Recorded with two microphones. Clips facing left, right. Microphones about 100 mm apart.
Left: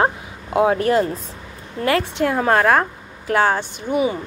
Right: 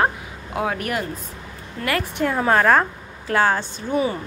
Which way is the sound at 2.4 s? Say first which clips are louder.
Left 1 dB; 35° left (ahead or behind).